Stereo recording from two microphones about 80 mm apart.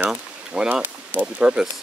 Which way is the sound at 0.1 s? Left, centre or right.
Centre.